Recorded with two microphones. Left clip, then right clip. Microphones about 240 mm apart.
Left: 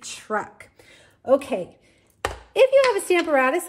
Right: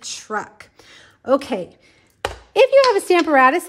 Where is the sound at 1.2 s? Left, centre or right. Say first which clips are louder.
Right 1 dB; right.